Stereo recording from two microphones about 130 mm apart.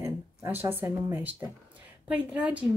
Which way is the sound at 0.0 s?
20° right (ahead or behind).